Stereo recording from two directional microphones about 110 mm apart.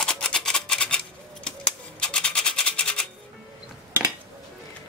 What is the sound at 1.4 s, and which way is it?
Music, 10° left (ahead or behind).